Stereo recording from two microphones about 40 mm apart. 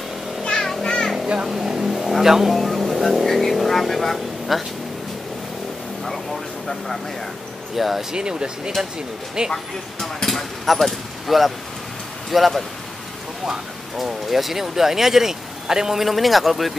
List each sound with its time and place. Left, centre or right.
0.4 s vehicle: centre
1.2 s vehicle: right
1.5 s speech: centre
2.5 s speech: centre
7.7 s speech: centre
8.1 s speech: right
9.5 s speech: centre
13.9 s speech: centre